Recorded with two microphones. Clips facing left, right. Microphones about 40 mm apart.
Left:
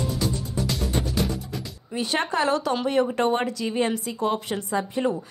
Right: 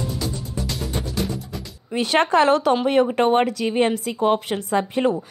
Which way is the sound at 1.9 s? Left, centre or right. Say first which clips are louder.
Right 7 dB; right.